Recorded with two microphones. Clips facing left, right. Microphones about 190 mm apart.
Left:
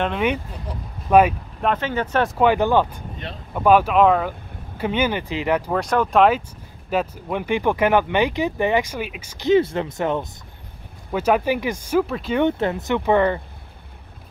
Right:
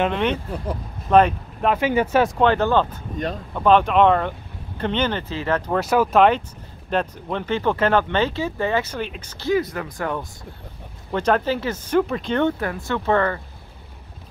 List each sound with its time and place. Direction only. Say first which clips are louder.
0.0 s speech: even; 5° left (ahead or behind)
1.7 s speech: right 3 dB; 10° right (ahead or behind)
2.2 s speech: left 1 dB; 5° left (ahead or behind)
5.7 s speech: right 1 dB; 5° right (ahead or behind)
9.5 s speech: left 4 dB; 25° left (ahead or behind)
11.1 s speech: left 1 dB; 10° left (ahead or behind)
12.0 s speech: even; 5° left (ahead or behind)
12.4 s speech: left 3 dB; 20° left (ahead or behind)